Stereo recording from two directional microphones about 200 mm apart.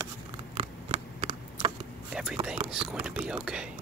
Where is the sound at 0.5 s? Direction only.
30° right (ahead or behind).